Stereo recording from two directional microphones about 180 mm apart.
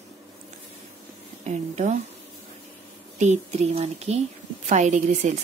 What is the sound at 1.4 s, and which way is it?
Speech, 40° right (ahead or behind).